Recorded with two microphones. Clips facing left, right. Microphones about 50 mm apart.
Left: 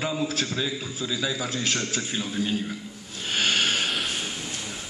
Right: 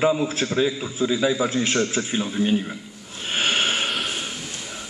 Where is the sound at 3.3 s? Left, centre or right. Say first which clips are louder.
Right 2 dB; right.